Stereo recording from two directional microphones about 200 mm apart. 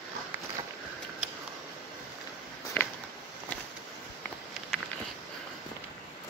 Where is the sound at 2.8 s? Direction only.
10° left (ahead or behind).